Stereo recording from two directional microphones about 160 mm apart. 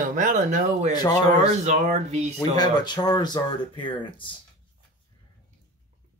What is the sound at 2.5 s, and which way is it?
Speech, 25° left (ahead or behind).